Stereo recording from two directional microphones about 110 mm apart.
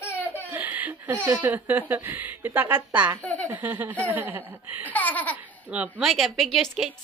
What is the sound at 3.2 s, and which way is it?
Speech, 15° left (ahead or behind).